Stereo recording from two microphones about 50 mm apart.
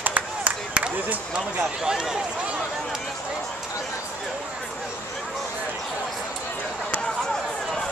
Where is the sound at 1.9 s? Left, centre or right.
Centre.